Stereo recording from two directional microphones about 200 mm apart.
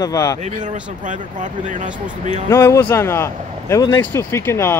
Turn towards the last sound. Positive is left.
turn(degrees=15)  # may be behind; listen again after turning